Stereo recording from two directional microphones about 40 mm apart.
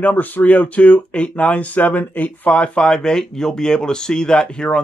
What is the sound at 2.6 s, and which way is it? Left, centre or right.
Speech, left.